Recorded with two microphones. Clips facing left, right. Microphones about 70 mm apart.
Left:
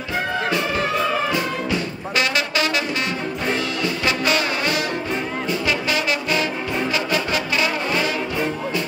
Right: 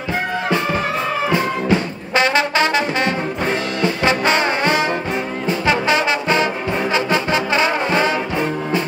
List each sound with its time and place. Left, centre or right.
1.3 s brass instrument: right
3.8 s brass instrument: right